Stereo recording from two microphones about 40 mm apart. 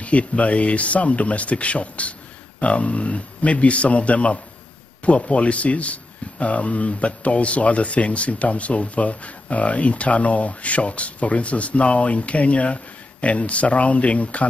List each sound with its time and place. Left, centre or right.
0.0 s speech: left